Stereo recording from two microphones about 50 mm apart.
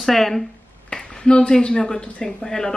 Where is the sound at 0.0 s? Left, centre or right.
Centre.